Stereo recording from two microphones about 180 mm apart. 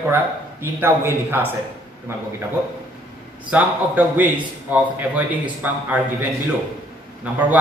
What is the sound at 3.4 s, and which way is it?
A man's voice, 10° right (ahead or behind).